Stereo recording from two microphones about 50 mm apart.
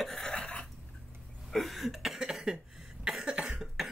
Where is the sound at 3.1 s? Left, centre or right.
Centre.